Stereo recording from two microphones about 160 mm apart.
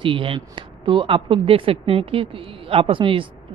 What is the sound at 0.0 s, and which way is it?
Speech, 35° right (ahead or behind).